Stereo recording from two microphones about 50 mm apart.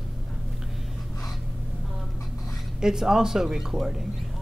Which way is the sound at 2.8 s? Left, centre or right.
Centre.